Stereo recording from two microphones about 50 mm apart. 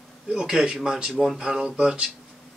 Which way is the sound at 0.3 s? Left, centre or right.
Centre.